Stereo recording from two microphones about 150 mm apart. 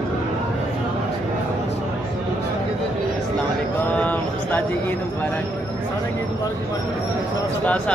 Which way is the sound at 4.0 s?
10° left (ahead or behind).